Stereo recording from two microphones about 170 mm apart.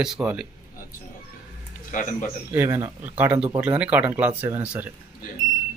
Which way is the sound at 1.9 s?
50° left (ahead or behind).